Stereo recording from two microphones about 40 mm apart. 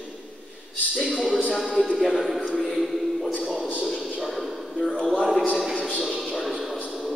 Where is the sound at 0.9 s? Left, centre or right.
Centre.